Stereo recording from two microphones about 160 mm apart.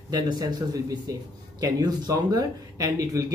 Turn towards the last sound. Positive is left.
turn(degrees=-20)  # may be behind; listen again after turning